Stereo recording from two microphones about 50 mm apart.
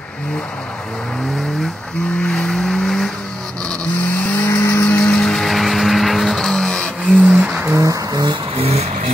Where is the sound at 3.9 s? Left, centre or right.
Left.